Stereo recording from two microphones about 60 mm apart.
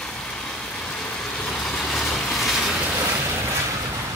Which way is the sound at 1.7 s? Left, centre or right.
Centre.